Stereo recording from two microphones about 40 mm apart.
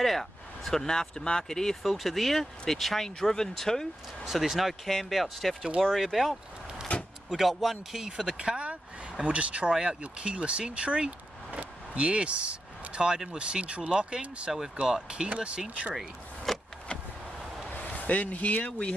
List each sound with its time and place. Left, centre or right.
0.0 s speech: centre
1.8 s speech: centre
4.2 s speech: centre
6.9 s door: left
7.2 s speech: centre
8.4 s speech: right
9.7 s speech: centre
10.1 s speech: right
16.5 s vehicle: centre
17.6 s speech: left